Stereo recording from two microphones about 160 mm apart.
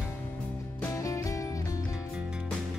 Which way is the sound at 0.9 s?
20° left (ahead or behind).